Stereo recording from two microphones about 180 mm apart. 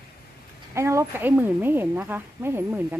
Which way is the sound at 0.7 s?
15° right (ahead or behind).